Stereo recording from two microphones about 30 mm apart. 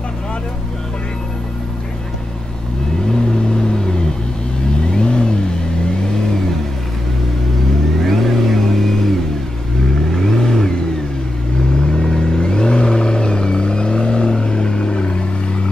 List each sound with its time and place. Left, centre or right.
3.1 s vehicle: left
4.9 s vehicle: left
8.1 s vehicle: centre
10.1 s vehicle: centre
11.8 s vehicle: centre